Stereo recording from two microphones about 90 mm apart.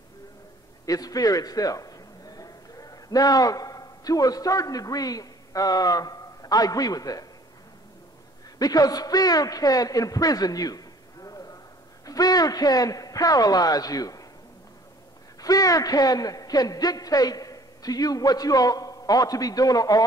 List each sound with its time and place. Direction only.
0.8 s a man's voice: 40° left (ahead or behind)
8.5 s a man's voice: 45° left (ahead or behind)
11.2 s a sound: 40° left (ahead or behind)
12.1 s a man's voice: 45° left (ahead or behind)
15.4 s a man's voice: 45° left (ahead or behind)